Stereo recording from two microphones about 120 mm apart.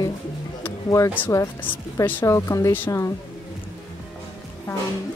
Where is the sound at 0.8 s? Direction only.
25° left (ahead or behind).